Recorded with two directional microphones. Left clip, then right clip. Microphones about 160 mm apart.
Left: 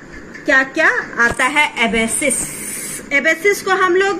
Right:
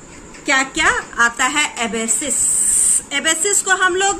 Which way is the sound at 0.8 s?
35° right (ahead or behind).